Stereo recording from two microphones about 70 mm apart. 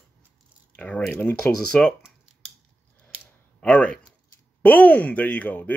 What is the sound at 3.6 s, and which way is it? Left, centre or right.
Speech, centre.